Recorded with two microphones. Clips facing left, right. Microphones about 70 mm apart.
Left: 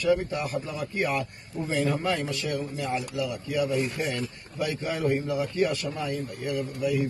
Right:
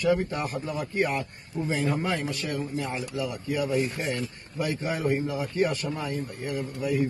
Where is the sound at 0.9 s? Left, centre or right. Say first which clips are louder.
Even; right.